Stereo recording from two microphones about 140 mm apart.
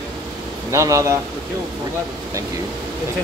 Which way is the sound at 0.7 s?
20° right (ahead or behind).